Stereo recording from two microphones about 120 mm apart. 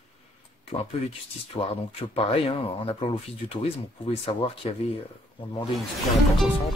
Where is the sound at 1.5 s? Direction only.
40° left (ahead or behind).